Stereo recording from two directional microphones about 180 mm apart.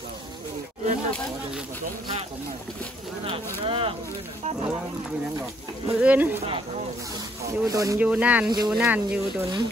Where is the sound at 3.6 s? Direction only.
30° right (ahead or behind).